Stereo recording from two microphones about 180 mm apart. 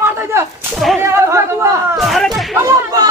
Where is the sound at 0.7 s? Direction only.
Centre (ahead or behind).